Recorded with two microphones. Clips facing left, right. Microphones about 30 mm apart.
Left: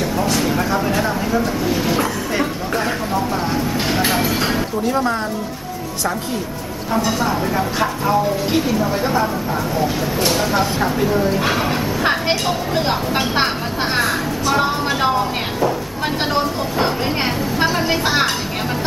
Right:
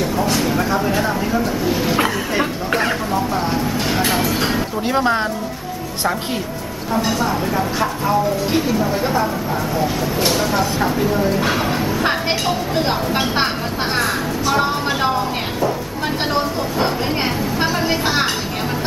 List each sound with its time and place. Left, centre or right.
0.0 s speech: centre
3.1 s vehicle: centre
4.1 s speech: centre
4.8 s speech: right
7.1 s speech: centre